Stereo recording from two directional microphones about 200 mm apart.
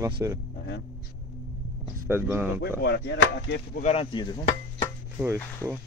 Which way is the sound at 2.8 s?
55° left (ahead or behind).